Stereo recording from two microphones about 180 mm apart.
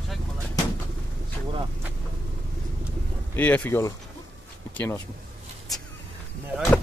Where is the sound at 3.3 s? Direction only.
10° left (ahead or behind).